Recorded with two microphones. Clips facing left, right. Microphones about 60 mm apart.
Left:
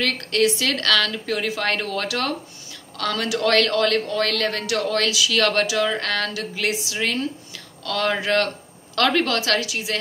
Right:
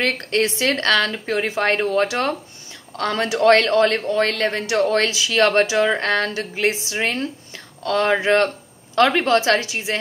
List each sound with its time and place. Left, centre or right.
0.0 s a woman's voice: right